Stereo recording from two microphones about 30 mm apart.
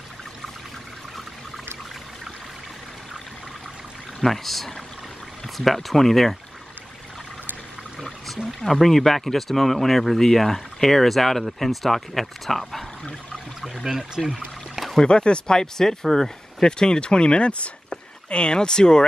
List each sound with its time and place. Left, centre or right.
4.2 s speech: centre
8.5 s speech: centre
14.2 s speech: centre
15.0 s speech: left; by 16.6 s centre
16.6 s speech: left